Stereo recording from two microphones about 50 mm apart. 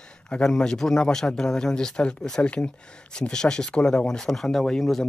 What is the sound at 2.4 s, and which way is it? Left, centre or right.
Speech, left.